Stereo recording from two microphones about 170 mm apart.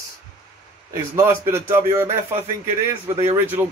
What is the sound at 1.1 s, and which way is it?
Speech, 15° right (ahead or behind).